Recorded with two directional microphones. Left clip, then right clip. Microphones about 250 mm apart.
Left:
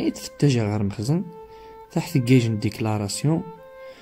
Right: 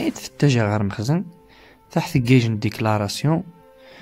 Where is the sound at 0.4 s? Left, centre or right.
Centre.